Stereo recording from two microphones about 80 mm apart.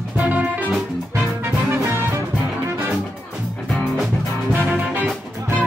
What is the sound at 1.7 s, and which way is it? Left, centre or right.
Music, right.